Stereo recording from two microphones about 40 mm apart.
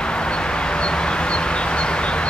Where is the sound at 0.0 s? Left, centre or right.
Left.